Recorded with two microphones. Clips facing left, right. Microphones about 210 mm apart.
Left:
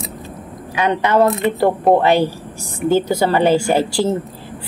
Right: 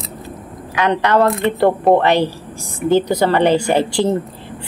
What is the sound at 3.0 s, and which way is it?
Speech, 10° left (ahead or behind).